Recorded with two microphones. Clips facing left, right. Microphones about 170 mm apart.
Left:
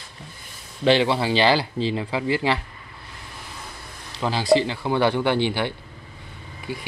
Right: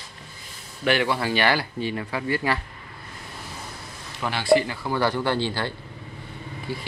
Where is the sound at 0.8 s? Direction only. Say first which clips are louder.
Left 4 dB; 25° left (ahead or behind).